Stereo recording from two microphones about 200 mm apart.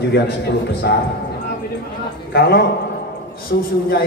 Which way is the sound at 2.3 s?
50° left (ahead or behind).